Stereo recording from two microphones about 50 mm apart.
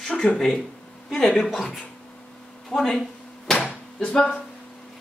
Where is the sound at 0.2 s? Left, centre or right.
Centre.